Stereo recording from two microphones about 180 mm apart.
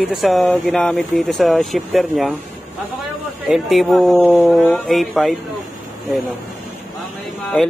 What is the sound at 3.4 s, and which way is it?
Speech, centre (ahead or behind).